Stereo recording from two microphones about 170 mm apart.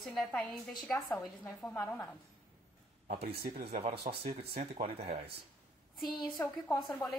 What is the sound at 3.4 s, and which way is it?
Speech, 65° right (ahead or behind).